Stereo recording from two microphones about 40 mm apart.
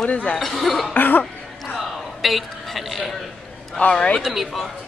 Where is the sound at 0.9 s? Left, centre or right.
Left.